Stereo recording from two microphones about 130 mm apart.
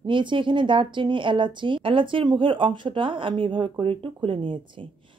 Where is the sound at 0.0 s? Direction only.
40° right (ahead or behind).